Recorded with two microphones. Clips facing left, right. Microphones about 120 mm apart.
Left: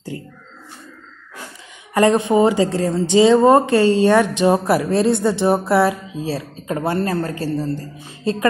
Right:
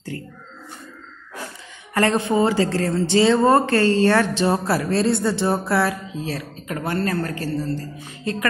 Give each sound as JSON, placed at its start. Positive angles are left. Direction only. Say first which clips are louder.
{"t": 2.0, "sound": "a woman's voice", "louder": "left 4 dB", "side_deg": 20}